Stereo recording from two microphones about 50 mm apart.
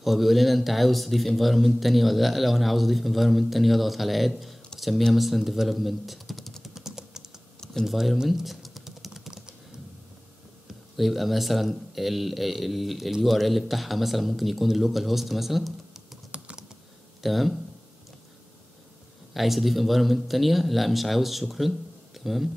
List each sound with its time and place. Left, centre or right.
0.0 s speech: centre
6.6 s typing: centre
7.8 s speech: centre
8.3 s typing: centre
11.0 s speech: centre
16.3 s typing: right
17.2 s speech: centre
19.3 s speech: centre